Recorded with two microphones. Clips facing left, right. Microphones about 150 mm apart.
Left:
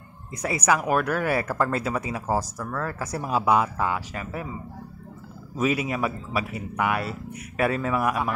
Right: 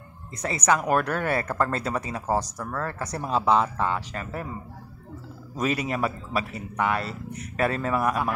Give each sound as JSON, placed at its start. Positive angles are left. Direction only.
{"t": 0.4, "sound": "a man's voice", "side_deg": 10}
{"t": 5.6, "sound": "a man's voice", "side_deg": 5}